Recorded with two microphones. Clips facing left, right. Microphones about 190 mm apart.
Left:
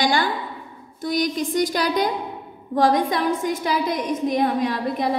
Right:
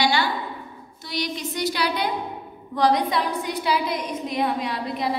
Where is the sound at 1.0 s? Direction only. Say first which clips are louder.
Left 7 dB; 45° left (ahead or behind).